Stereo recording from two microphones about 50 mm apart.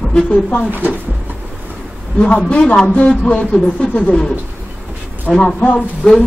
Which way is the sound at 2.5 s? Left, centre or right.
Left.